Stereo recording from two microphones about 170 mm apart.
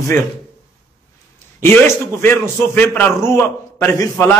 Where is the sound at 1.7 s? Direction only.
15° left (ahead or behind).